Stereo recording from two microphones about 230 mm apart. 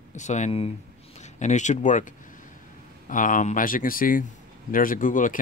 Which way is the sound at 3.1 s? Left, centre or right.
Left.